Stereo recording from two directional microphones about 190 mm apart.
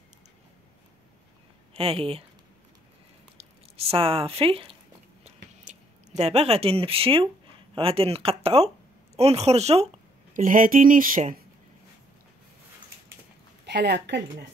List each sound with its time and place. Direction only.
1.7 s speech: 30° right (ahead or behind)
3.3 s speech: 30° right (ahead or behind)
5.2 s a sound: 40° right (ahead or behind)
7.7 s speech: 30° right (ahead or behind)
10.3 s speech: 45° right (ahead or behind)
13.7 s a woman's voice: 60° right (ahead or behind)